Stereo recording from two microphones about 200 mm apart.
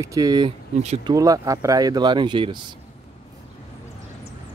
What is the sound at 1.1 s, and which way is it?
Speech, 15° right (ahead or behind).